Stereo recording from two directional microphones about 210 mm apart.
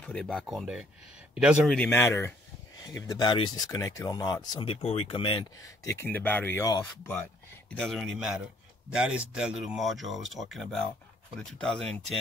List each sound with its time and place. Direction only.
0.0 s speech: 5° left (ahead or behind)